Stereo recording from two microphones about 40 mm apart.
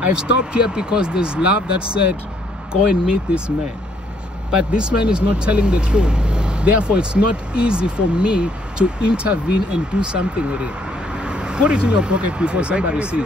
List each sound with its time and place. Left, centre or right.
0.0 s speech: right
2.7 s speech: right